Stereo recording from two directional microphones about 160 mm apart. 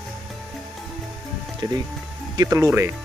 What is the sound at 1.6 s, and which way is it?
Speech, 25° right (ahead or behind).